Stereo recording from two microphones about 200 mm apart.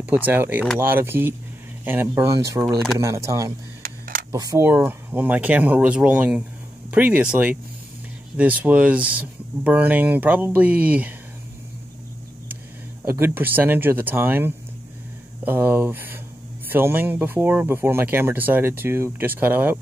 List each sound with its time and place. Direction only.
0.1 s speech: 10° right (ahead or behind)
3.8 s camera: 45° right (ahead or behind)
4.3 s speech: 15° right (ahead or behind)
13.0 s speech: 10° right (ahead or behind)